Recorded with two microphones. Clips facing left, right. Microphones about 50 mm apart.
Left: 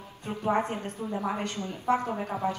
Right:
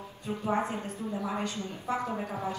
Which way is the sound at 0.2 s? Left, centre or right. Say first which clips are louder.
Left 3 dB; left.